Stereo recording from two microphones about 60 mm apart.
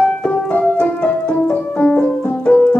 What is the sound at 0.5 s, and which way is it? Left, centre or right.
Keyboard, left.